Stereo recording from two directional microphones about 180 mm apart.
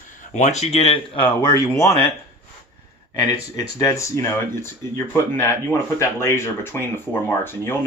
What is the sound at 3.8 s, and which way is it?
Speech, 15° left (ahead or behind).